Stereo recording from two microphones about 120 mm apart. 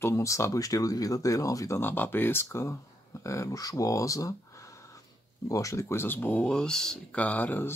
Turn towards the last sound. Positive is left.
turn(degrees=15)  # may be behind; listen again after turning